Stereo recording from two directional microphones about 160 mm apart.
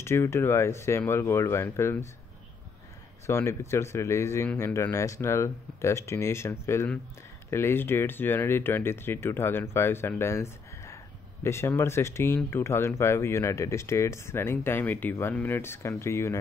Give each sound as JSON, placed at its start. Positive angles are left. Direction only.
{"t": 0.0, "sound": "speech", "side_deg": 15}
{"t": 3.3, "sound": "speech", "side_deg": 15}